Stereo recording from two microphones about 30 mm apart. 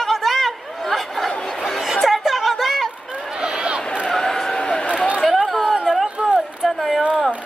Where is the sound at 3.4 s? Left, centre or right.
Right.